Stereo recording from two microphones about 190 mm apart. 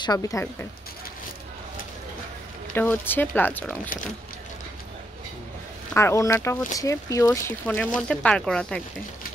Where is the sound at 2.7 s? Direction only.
10° left (ahead or behind).